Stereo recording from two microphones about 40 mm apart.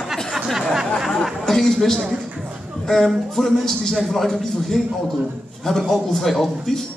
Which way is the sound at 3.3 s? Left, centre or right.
Centre.